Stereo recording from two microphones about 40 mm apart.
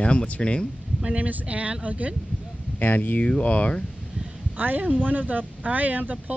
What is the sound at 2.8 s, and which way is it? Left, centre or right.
Speech, left.